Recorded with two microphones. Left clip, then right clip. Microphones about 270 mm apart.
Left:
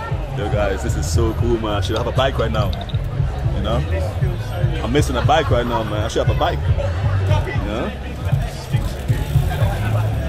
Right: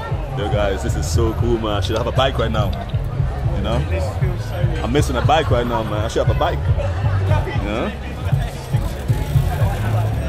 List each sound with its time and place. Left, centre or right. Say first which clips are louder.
0.4 s speech: right 1 dB; centre
4.9 s speech: even; centre